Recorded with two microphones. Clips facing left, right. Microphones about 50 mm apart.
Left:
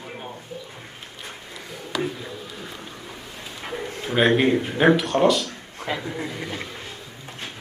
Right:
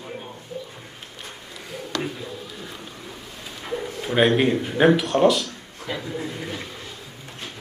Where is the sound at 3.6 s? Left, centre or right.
Centre.